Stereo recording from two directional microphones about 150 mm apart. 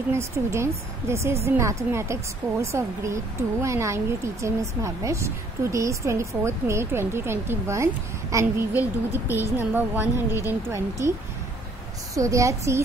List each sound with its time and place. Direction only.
0.1 s a woman's voice: 20° right (ahead or behind)
12.2 s speech: 20° right (ahead or behind)